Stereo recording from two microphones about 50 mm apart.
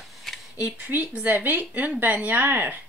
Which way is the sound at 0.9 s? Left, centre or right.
Right.